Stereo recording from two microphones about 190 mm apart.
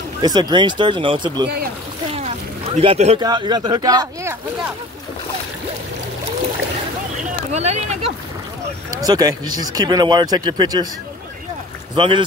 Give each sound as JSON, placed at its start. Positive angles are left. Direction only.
{"t": 0.2, "sound": "speech", "side_deg": -20}
{"t": 2.1, "sound": "a sound", "side_deg": -35}
{"t": 3.2, "sound": "speech", "side_deg": -20}
{"t": 7.2, "sound": "speech", "side_deg": -35}
{"t": 8.9, "sound": "speech", "side_deg": -20}
{"t": 11.9, "sound": "speech", "side_deg": -25}